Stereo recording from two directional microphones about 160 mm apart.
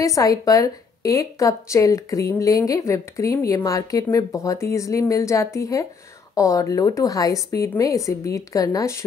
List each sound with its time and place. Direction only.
0.0 s a woman's voice: 20° left (ahead or behind)